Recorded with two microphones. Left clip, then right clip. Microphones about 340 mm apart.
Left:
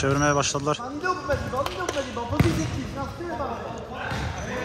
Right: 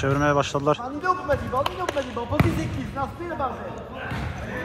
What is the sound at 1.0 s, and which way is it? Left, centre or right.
Basketball bounce, right.